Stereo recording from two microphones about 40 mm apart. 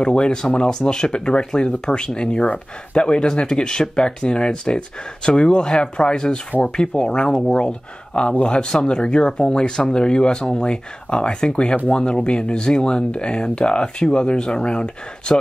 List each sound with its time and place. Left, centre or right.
0.0 s speech: left